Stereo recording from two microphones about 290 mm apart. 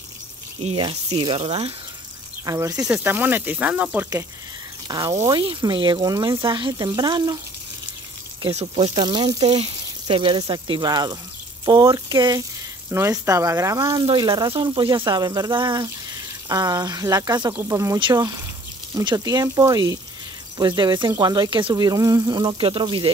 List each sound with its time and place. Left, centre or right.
0.6 s speech: centre
8.4 s speech: centre